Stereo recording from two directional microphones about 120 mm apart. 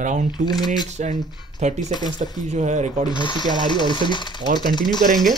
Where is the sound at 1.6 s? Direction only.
75° right (ahead or behind).